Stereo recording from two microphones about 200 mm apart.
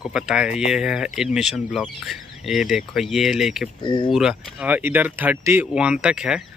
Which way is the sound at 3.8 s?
25° left (ahead or behind).